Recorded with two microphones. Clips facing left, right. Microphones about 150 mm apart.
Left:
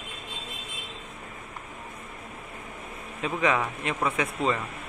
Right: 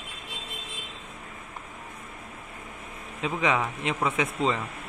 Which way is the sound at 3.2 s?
20° right (ahead or behind).